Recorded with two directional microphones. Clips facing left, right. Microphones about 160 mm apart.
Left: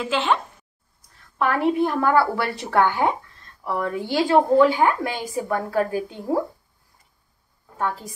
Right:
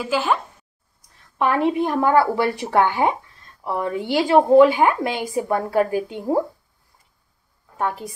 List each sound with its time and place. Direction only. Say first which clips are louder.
0.0 s speech: right 1 dB; 5° right (ahead or behind)
1.4 s a woman's voice: right 1 dB; 20° right (ahead or behind)
7.7 s a woman's voice: right 2 dB; 20° right (ahead or behind)